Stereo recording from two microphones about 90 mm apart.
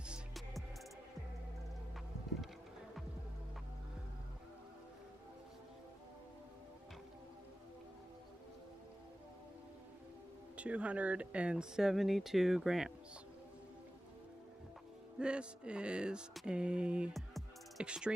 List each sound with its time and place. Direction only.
10.5 s speech: 15° right (ahead or behind)
15.1 s speech: 10° right (ahead or behind)
17.1 s music: centre (ahead or behind)
17.8 s speech: 10° right (ahead or behind)